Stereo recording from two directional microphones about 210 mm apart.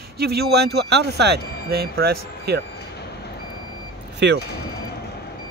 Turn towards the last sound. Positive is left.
turn(degrees=-55)  # may be behind; listen again after turning